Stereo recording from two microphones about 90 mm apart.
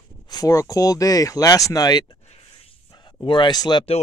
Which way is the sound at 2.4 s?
90° left.